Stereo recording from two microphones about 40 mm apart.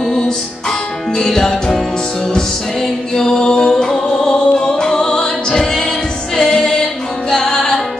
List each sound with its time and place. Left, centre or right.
0.0 s music: centre